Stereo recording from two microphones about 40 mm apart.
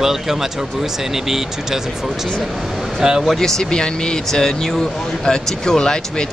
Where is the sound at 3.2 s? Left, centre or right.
Centre.